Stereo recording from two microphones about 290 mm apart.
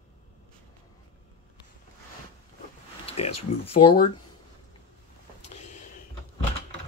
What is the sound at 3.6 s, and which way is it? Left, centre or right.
Speech, left.